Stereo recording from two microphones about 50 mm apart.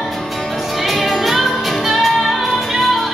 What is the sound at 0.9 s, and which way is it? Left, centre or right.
Music, centre.